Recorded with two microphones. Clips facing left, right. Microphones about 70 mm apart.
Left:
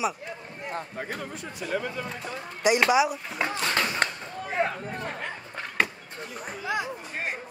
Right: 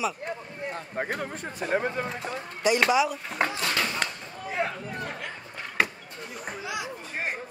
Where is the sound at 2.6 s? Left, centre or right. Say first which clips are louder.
Left 1 dB; centre.